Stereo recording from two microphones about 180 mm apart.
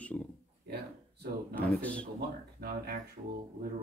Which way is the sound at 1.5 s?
10° left (ahead or behind).